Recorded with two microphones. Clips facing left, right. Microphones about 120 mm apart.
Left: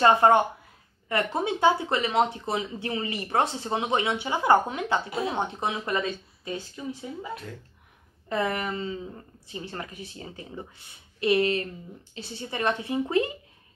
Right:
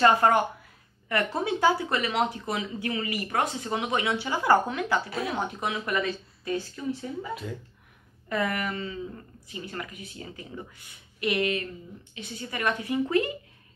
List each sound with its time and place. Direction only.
0.0 s speech: 25° left (ahead or behind)
8.3 s speech: 25° left (ahead or behind)